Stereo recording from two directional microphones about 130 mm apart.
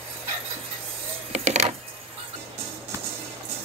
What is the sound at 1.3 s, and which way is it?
Vehicle, 55° right (ahead or behind).